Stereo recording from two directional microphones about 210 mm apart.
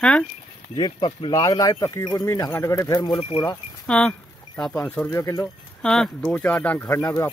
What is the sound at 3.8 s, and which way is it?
Speech, 5° left (ahead or behind).